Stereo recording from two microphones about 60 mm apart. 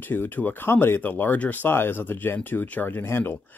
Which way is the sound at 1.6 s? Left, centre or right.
Left.